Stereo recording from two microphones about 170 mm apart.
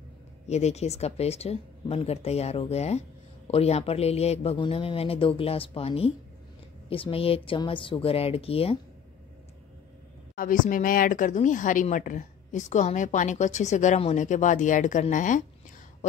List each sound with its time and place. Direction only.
0.5 s speech: 40° left (ahead or behind)
10.3 s speech: 55° left (ahead or behind)